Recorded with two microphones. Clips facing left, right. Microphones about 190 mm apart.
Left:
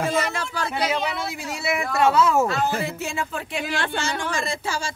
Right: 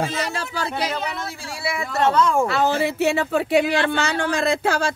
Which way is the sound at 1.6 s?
20° left (ahead or behind).